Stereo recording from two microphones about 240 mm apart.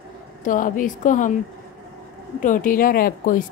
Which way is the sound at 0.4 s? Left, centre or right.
Left.